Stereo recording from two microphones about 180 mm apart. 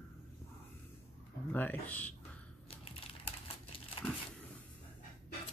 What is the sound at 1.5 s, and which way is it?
Speech, 10° left (ahead or behind).